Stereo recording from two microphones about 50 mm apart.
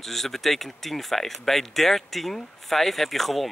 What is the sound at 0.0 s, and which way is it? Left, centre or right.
Speech, centre.